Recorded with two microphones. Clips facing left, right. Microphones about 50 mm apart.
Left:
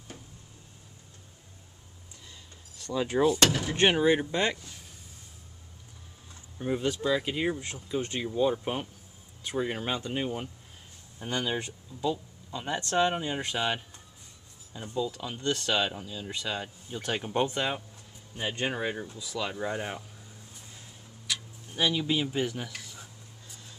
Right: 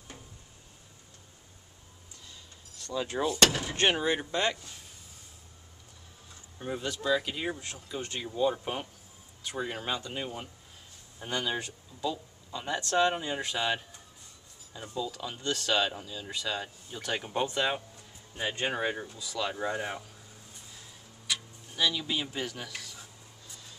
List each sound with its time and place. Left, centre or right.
2.9 s speech: centre
6.6 s speech: centre
18.5 s speech: centre
19.1 s speech: centre
21.9 s speech: centre
22.8 s a sound: left